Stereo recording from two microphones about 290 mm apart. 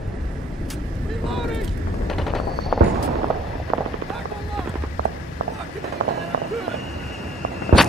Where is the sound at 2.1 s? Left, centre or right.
Centre.